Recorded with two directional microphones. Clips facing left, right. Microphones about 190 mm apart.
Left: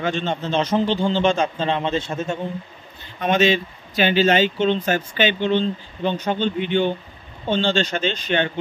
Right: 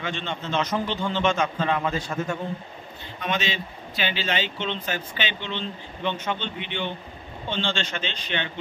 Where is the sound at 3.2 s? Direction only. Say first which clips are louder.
Left 10 dB; 50° left (ahead or behind).